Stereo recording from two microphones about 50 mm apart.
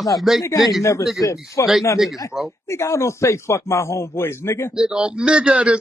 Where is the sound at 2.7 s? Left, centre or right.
Left.